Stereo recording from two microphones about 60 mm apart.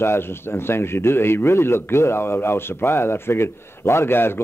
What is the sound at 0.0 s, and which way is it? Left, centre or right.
Speech, left.